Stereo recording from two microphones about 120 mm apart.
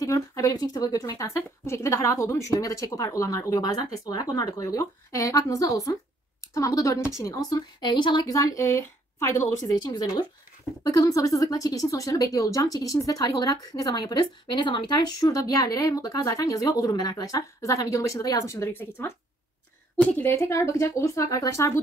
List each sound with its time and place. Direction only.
0.0 s speech: 30° left (ahead or behind)
20.2 s speech: 20° left (ahead or behind)